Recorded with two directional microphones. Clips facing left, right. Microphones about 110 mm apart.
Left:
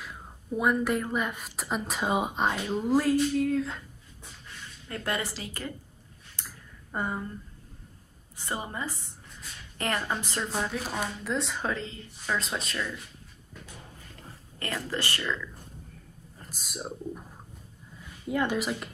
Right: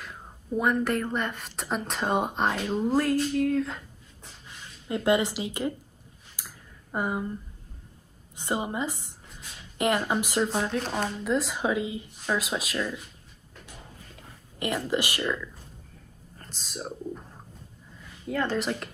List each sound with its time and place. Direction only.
0.0 s a woman's voice: centre (ahead or behind)
4.8 s speech: 20° right (ahead or behind)
6.3 s a sound: 10° right (ahead or behind)
8.4 s a woman's voice: 20° right (ahead or behind)
14.1 s speech: 15° right (ahead or behind)
16.3 s speech: 10° left (ahead or behind)
18.3 s speech: 15° left (ahead or behind)